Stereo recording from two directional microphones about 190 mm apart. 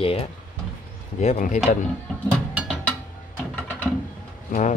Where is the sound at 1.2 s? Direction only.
40° left (ahead or behind).